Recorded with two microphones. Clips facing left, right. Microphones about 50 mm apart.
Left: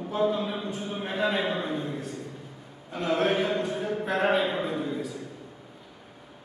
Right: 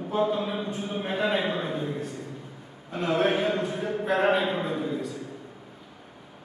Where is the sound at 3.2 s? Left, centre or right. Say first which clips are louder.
Right 1 dB; right.